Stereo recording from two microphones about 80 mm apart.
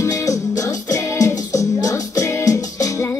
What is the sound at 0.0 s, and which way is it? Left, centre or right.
Music, left.